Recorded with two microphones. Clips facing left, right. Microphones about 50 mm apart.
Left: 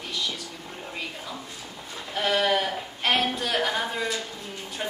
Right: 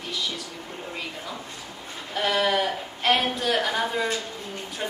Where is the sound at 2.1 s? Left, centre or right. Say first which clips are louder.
Even; centre.